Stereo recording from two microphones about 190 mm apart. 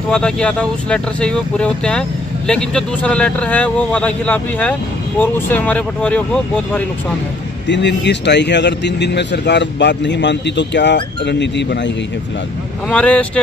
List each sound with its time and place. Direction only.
0.1 s speech: 5° left (ahead or behind)
7.6 s a man's voice: 70° left (ahead or behind)
12.9 s speech: 5° left (ahead or behind)